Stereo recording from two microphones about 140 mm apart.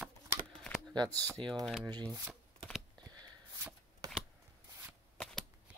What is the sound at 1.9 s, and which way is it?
Speech, 30° right (ahead or behind).